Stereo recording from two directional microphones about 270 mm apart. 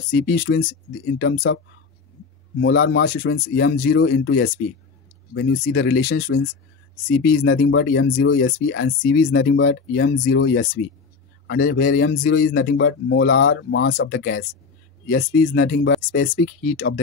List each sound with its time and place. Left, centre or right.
0.1 s speech: left
2.6 s a man's voice: left
5.9 s speech: left
7.4 s a man's voice: left